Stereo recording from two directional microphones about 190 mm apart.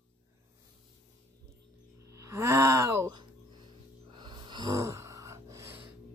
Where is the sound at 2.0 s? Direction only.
15° right (ahead or behind).